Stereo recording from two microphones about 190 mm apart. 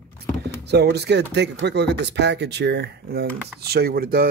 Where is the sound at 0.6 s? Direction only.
60° right (ahead or behind).